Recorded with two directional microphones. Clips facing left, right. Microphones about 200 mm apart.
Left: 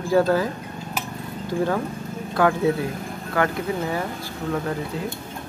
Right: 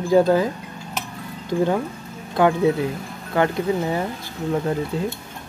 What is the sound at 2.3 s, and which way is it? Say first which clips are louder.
Speech: right 2 dB; 20° right (ahead or behind).